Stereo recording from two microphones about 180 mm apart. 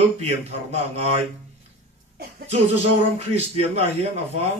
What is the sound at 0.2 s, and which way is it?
A man's voice, 35° right (ahead or behind).